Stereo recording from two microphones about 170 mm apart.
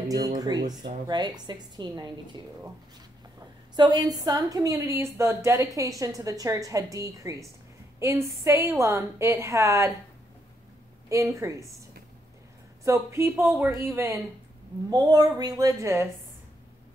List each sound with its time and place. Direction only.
0.4 s a woman's voice: 25° right (ahead or behind)
3.7 s a woman's voice: 25° right (ahead or behind)
11.1 s a woman's voice: 20° right (ahead or behind)
12.8 s a woman's voice: 15° right (ahead or behind)